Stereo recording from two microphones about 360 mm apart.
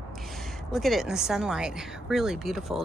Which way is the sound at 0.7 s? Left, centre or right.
Centre.